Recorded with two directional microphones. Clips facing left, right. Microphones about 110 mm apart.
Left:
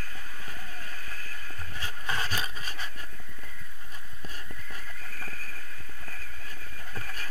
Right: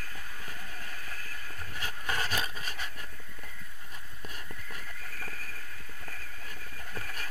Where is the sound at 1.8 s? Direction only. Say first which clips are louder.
Left 1 dB; 30° left (ahead or behind).